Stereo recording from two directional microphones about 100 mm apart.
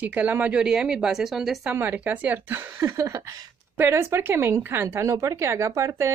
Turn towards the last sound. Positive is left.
turn(degrees=-30)  # may be behind; listen again after turning